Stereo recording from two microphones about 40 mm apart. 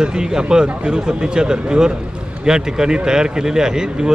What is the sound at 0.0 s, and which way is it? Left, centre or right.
Speech, centre.